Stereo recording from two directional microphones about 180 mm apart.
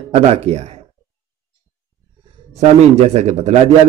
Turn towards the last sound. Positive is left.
turn(degrees=-35)  # may be behind; listen again after turning